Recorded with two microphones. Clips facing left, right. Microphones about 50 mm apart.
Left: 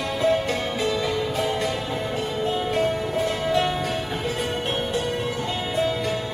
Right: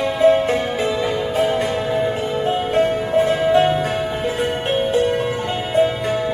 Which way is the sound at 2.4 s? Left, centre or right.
Right.